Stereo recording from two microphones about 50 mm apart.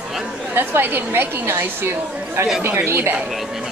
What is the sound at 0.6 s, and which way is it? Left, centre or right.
A woman's voice, right.